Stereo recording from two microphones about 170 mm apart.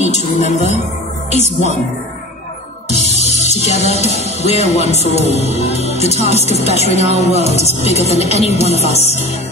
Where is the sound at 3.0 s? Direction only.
40° right (ahead or behind).